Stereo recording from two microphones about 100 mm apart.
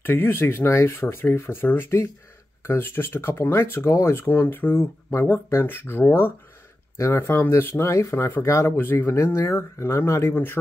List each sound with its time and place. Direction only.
0.0 s speech: 20° left (ahead or behind)